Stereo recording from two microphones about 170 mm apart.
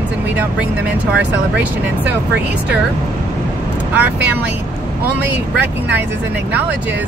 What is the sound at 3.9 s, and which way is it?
Speech, 10° right (ahead or behind).